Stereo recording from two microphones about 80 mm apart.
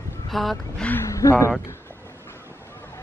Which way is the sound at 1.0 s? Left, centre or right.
Left.